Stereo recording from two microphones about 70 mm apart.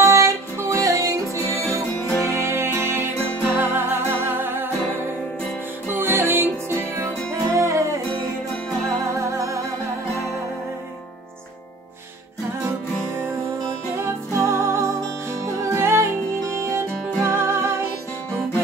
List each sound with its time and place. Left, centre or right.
0.0 s music: right
5.9 s music: right
7.5 s music: right
9.2 s music: right
13.9 s music: right